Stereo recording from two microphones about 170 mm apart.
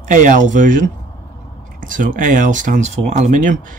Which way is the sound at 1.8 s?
50° right (ahead or behind).